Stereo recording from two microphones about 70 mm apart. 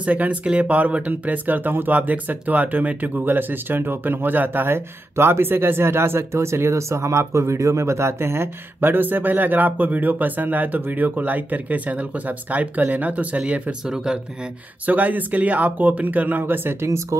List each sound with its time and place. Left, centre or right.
0.0 s speech: right
14.9 s speech: right
16.8 s speech: right